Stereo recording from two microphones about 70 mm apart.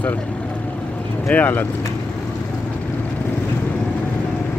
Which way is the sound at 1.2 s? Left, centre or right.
Left.